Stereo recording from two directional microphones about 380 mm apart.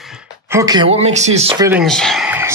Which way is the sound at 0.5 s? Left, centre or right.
Centre.